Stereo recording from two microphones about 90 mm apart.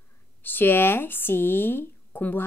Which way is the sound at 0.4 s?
20° left (ahead or behind).